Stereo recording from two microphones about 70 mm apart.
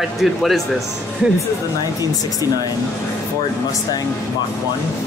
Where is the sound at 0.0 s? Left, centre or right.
Centre.